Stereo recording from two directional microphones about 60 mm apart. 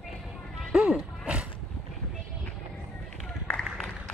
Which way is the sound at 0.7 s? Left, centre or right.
Centre.